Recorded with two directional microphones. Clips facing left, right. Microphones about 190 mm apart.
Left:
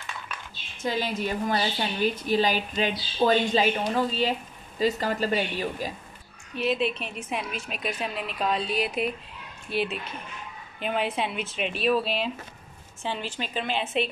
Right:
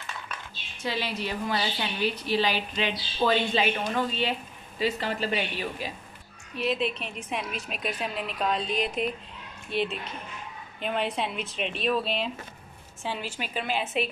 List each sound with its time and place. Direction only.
0.8 s a woman's voice: 45° left (ahead or behind)
6.5 s a woman's voice: centre (ahead or behind)